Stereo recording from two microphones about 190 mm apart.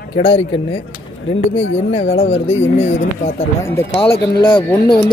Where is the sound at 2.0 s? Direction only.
35° left (ahead or behind).